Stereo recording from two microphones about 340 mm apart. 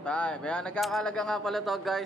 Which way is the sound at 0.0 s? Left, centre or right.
Centre.